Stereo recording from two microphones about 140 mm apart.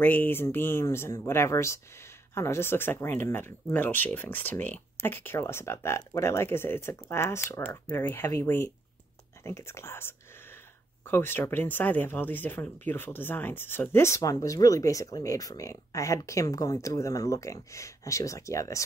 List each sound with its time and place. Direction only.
0.0 s speech: 15° left (ahead or behind)